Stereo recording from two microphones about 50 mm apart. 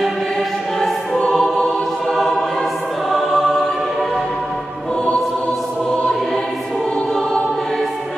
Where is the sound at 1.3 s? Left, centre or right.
Centre.